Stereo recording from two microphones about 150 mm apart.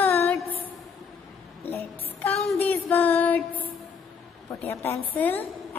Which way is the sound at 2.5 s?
10° left (ahead or behind).